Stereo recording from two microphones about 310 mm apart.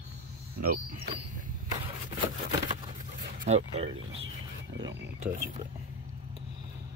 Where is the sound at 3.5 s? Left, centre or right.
Centre.